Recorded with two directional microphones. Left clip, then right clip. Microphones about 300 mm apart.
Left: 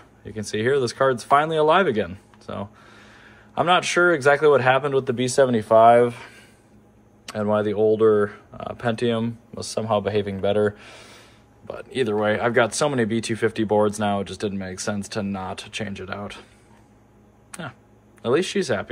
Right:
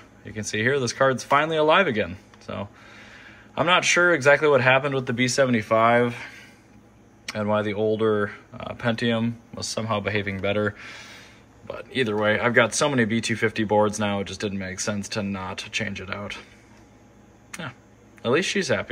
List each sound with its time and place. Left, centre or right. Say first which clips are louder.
0.2 s speech: even; centre
17.5 s a sound: even; centre
18.2 s speech: left 1 dB; centre